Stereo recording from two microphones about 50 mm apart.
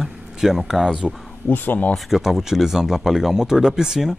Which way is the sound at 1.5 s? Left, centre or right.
Left.